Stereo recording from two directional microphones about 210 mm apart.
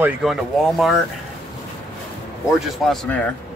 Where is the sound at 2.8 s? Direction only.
Centre (ahead or behind).